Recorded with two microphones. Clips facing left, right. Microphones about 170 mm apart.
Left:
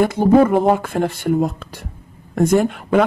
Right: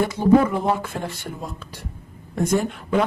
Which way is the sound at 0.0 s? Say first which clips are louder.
Left 4 dB; 55° left (ahead or behind).